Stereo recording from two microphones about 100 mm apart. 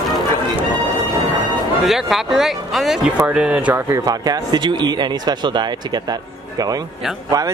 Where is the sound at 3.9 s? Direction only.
35° right (ahead or behind).